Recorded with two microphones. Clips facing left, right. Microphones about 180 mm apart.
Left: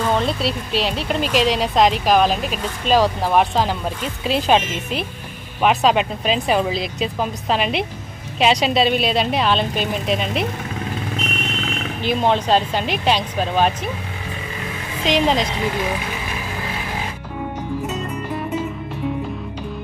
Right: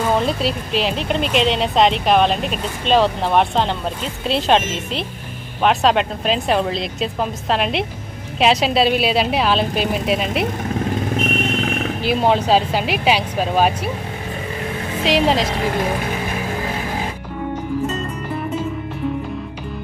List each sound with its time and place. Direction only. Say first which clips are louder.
0.0 s speech: right 1 dB; 5° right (ahead or behind)
11.1 s a sound: right 6 dB; 50° right (ahead or behind)
12.0 s speech: right 1 dB; 5° right (ahead or behind)
15.0 s speech: right 1 dB; 5° right (ahead or behind)